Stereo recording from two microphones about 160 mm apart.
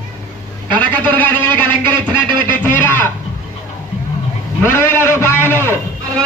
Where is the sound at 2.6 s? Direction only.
10° left (ahead or behind).